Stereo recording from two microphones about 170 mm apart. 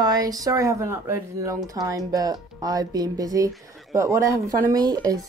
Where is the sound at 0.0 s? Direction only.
20° right (ahead or behind).